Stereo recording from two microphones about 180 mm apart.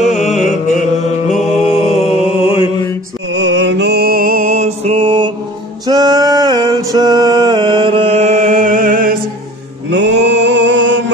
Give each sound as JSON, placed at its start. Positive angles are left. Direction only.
{"t": 0.3, "sound": "music", "side_deg": 0}
{"t": 1.3, "sound": "mantra", "side_deg": 35}
{"t": 3.3, "sound": "mantra", "side_deg": -90}
{"t": 5.9, "sound": "a sound", "side_deg": -20}
{"t": 9.8, "sound": "male singing", "side_deg": -80}